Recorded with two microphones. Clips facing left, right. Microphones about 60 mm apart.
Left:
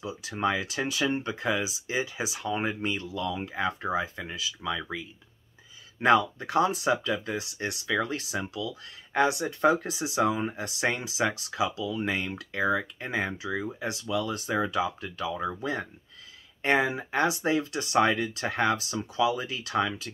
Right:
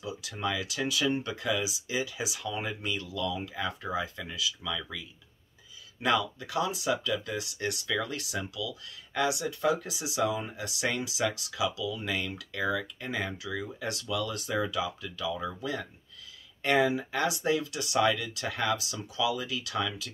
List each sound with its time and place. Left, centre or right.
0.0 s speech: left